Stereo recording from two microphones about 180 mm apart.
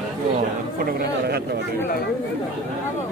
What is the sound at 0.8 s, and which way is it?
Speech, 60° right (ahead or behind).